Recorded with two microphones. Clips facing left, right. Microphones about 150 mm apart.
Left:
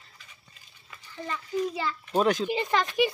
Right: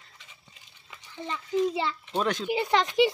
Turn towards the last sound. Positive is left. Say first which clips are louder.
# right 2 dB
turn(degrees=-20)  # may be behind; listen again after turning